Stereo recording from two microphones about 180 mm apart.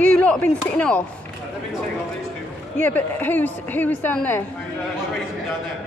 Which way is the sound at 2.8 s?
10° left (ahead or behind).